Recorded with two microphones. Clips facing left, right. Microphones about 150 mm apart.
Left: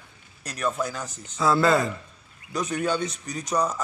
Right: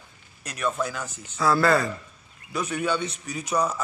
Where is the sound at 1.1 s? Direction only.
35° left (ahead or behind).